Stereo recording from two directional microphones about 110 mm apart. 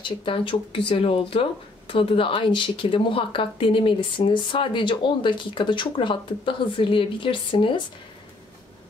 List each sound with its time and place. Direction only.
0.0 s speech: 50° left (ahead or behind)